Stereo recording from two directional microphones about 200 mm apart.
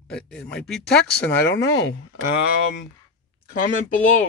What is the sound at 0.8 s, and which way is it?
Speech, 55° left (ahead or behind).